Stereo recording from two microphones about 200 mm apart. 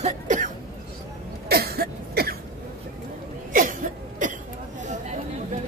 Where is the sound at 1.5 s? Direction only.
50° right (ahead or behind).